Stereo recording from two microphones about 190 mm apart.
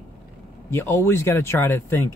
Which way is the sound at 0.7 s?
15° left (ahead or behind).